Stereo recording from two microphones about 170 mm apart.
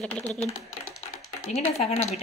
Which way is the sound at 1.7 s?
40° left (ahead or behind).